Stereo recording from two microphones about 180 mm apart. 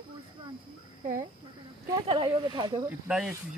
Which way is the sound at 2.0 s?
25° right (ahead or behind).